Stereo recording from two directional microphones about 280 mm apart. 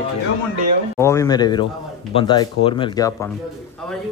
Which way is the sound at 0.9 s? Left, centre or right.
Centre.